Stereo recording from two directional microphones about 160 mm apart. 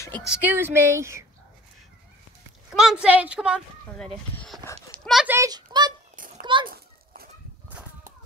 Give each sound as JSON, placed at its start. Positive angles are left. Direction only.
{"t": 0.2, "sound": "a woman's voice", "side_deg": -10}
{"t": 2.7, "sound": "a woman's voice", "side_deg": 0}
{"t": 3.9, "sound": "a child's voice", "side_deg": 5}
{"t": 5.3, "sound": "a child's voice", "side_deg": -20}
{"t": 6.1, "sound": "a sound", "side_deg": -60}
{"t": 6.4, "sound": "children playing", "side_deg": -30}